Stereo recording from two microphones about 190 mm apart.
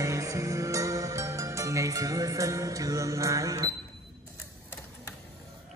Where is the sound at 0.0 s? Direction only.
15° right (ahead or behind).